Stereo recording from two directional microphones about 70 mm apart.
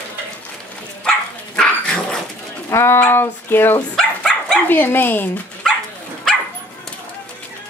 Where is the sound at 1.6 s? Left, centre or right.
Centre.